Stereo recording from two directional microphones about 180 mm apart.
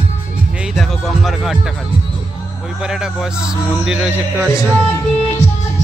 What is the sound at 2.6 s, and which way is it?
Speech, 5° right (ahead or behind).